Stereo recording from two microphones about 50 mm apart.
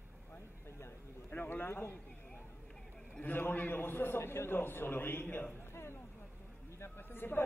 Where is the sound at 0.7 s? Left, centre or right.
Left.